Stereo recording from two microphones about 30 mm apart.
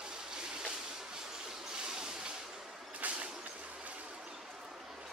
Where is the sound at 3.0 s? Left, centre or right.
Right.